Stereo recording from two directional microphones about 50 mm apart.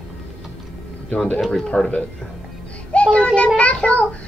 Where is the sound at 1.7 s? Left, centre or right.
Left.